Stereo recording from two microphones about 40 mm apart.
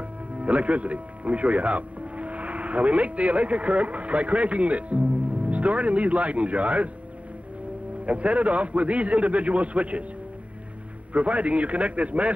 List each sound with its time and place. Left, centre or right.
0.4 s speech: right
8.0 s a man's voice: right
11.1 s a man's voice: right